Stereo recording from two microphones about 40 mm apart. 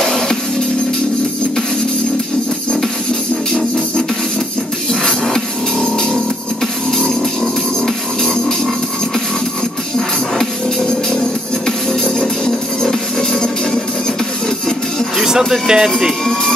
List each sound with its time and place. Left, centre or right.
0.0 s music: centre
5.0 s music: centre
11.6 s music: centre
15.1 s speech: centre